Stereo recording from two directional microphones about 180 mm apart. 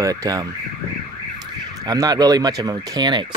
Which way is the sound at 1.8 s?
20° right (ahead or behind).